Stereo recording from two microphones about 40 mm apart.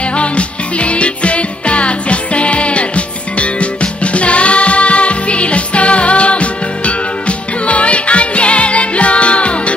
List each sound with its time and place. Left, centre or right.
0.2 s music: left